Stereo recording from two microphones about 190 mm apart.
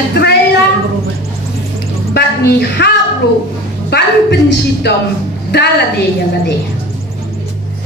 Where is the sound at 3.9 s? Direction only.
65° left (ahead or behind).